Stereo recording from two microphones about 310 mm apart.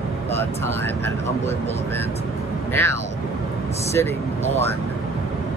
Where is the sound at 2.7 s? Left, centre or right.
Centre.